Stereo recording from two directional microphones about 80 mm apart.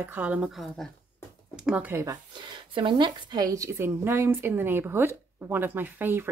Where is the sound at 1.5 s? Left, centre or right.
Centre.